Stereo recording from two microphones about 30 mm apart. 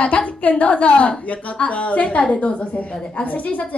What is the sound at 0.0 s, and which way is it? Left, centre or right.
A woman's voice, left.